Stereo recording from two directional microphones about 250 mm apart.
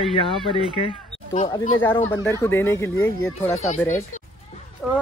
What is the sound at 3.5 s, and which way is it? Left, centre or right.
Speech, left.